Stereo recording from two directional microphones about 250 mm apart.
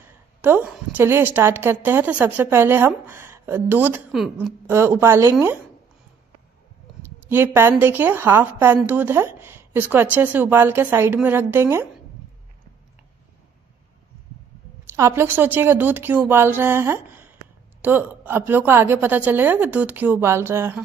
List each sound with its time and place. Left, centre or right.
0.0 s a woman's voice: centre
7.0 s a woman's voice: centre
15.0 s a woman's voice: centre